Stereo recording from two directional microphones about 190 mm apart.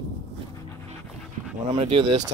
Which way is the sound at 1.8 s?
30° right (ahead or behind).